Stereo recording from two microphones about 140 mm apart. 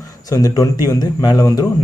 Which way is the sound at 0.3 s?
25° left (ahead or behind).